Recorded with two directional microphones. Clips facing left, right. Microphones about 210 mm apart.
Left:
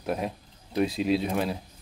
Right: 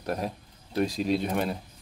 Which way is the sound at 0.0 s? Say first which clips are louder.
Left 1 dB; centre (ahead or behind).